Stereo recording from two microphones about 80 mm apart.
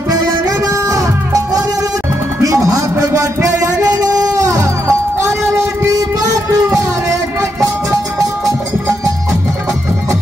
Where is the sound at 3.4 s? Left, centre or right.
Right.